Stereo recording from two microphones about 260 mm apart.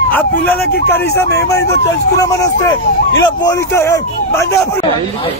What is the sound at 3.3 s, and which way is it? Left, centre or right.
Speech, centre.